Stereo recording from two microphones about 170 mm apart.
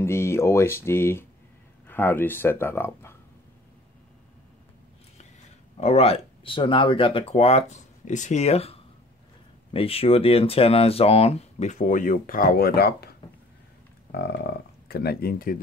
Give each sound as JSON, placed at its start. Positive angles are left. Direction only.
{"t": 0.0, "sound": "speech", "side_deg": 15}
{"t": 5.8, "sound": "speech", "side_deg": 40}
{"t": 14.1, "sound": "speech", "side_deg": 75}